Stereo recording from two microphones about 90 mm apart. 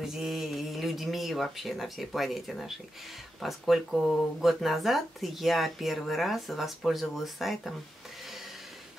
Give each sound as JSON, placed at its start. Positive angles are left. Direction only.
{"t": 0.0, "sound": "speech", "side_deg": -5}